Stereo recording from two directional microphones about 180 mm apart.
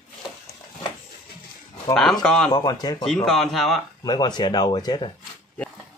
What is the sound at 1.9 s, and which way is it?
Speech, 5° left (ahead or behind).